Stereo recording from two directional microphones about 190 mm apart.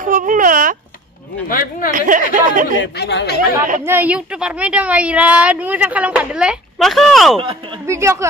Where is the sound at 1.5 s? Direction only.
50° left (ahead or behind).